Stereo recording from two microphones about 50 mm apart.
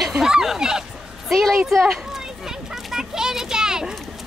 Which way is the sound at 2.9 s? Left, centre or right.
Centre.